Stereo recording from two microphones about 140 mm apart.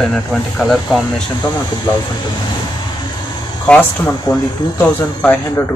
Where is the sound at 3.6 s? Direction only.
5° left (ahead or behind).